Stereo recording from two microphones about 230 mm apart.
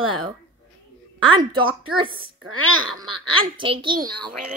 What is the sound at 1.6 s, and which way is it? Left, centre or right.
Speech, right.